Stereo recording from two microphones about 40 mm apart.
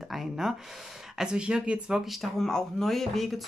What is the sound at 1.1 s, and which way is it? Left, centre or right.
Speech, centre.